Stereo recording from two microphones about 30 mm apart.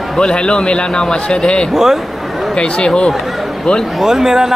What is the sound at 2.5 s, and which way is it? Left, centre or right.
Speech, left.